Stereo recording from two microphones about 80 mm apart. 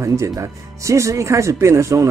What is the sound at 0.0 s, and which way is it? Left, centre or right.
Speech, right.